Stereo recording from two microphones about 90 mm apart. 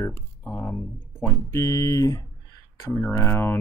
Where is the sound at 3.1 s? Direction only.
25° left (ahead or behind).